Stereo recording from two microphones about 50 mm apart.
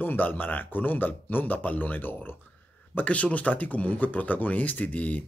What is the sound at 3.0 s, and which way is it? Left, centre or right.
Speech, left.